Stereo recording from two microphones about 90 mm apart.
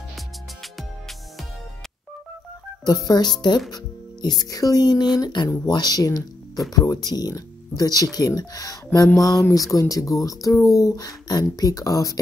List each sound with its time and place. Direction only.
3.1 s speech: 50° left (ahead or behind)